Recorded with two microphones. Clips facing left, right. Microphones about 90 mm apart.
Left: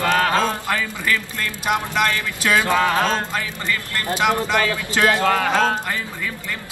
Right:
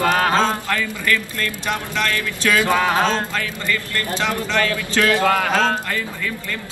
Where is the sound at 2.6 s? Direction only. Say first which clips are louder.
Right 2 dB; 20° right (ahead or behind).